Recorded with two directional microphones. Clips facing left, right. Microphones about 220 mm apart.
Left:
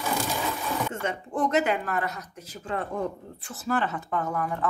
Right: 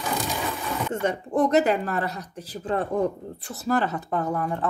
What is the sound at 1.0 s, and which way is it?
Speech, 40° right (ahead or behind).